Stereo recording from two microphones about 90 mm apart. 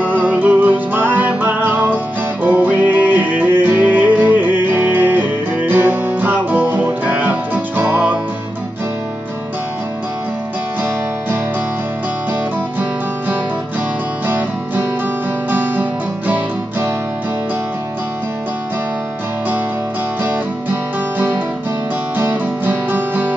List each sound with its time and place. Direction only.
0.0 s music: 20° right (ahead or behind)
14.2 s music: 25° right (ahead or behind)
22.1 s music: 20° right (ahead or behind)